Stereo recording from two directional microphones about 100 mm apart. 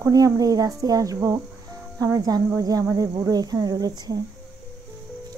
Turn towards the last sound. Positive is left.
turn(degrees=-40)  # may be behind; listen again after turning